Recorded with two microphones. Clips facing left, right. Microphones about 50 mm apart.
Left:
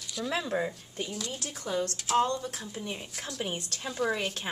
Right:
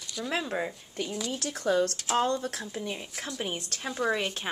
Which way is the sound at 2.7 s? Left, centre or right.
Right.